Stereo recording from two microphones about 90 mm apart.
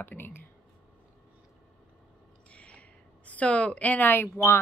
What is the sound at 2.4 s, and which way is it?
A woman's voice, 15° left (ahead or behind).